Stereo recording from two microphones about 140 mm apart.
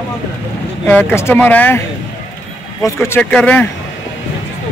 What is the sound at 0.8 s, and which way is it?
Speech, 15° left (ahead or behind).